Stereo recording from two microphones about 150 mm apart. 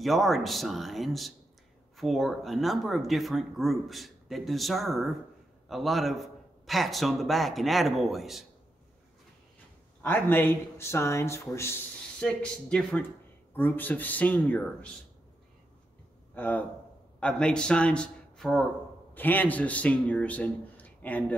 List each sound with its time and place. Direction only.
0.0 s speech: centre (ahead or behind)
10.0 s a man's voice: 15° left (ahead or behind)
12.2 s a man's voice: 5° left (ahead or behind)
16.3 s a man's voice: 10° left (ahead or behind)